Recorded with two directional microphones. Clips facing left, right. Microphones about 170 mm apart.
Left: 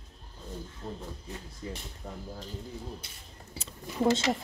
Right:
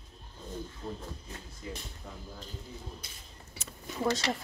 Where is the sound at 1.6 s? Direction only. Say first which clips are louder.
Left 2 dB; 35° left (ahead or behind).